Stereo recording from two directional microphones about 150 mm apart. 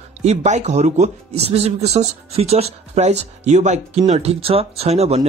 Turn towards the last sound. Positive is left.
turn(degrees=-45)  # may be behind; listen again after turning